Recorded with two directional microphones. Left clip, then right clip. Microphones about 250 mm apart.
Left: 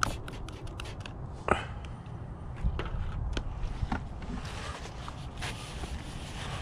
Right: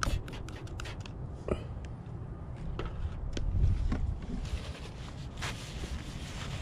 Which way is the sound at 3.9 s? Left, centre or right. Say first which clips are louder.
Left 6 dB; centre.